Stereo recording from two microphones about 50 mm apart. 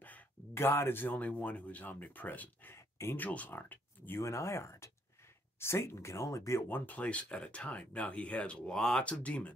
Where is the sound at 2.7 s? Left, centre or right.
Left.